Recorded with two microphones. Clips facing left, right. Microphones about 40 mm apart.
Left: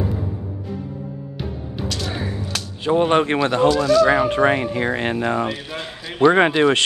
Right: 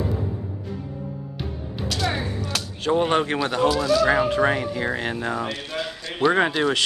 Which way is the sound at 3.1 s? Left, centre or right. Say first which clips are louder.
Left 4 dB; left.